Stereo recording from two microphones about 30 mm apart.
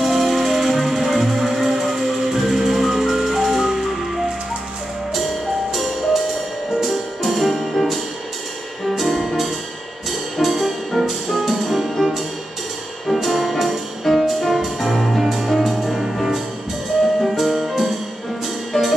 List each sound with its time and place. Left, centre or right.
0.0 s music: centre
5.7 s music: centre
11.5 s music: centre
17.2 s music: centre
18.7 s music: centre